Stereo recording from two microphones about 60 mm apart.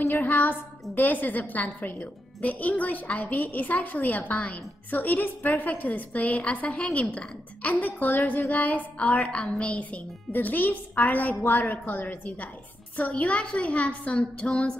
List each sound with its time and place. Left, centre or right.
0.1 s a woman's voice: left
9.1 s a woman's voice: centre
9.6 s a woman's voice: left